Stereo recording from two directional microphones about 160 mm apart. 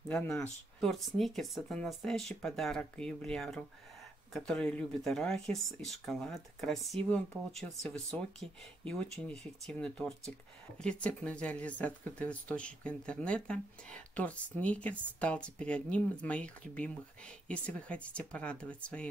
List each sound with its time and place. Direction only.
0.1 s speech: 10° left (ahead or behind)
8.1 s speech: 5° left (ahead or behind)